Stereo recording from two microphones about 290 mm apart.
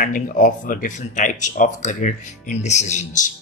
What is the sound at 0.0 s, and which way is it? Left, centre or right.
Speech, left.